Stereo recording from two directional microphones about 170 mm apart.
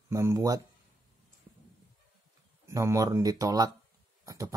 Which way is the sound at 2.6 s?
15° right (ahead or behind).